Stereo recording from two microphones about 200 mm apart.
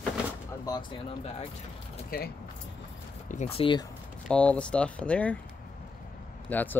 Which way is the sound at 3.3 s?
35° left (ahead or behind).